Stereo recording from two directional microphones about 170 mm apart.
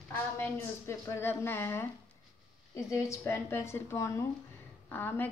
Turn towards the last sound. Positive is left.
turn(degrees=10)  # may be behind; listen again after turning